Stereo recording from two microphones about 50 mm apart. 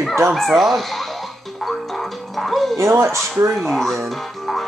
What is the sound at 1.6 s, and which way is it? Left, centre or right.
Music, centre.